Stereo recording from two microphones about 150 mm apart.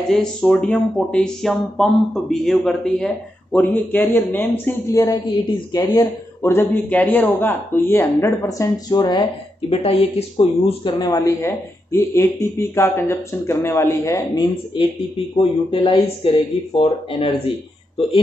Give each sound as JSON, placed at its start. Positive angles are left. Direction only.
{"t": 0.1, "sound": "a man's voice", "side_deg": 5}
{"t": 9.7, "sound": "speech", "side_deg": 40}